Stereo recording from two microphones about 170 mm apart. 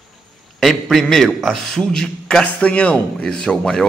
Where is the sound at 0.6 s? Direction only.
Centre (ahead or behind).